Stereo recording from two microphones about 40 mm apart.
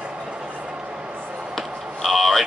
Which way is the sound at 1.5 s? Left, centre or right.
Centre.